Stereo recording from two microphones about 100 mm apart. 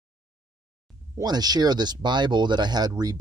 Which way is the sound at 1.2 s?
45° right (ahead or behind).